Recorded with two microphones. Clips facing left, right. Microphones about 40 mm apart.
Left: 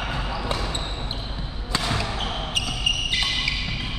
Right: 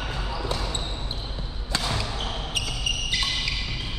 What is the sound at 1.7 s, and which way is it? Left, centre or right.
Basketball bounce, centre.